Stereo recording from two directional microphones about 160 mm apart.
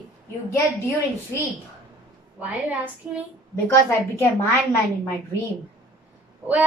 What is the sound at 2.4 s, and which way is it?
Speech, 10° right (ahead or behind).